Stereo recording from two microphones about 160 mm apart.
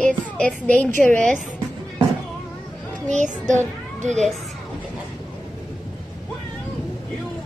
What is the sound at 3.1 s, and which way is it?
Speech, 50° right (ahead or behind).